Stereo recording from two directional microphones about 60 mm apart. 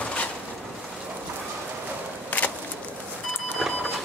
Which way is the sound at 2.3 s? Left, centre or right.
Left.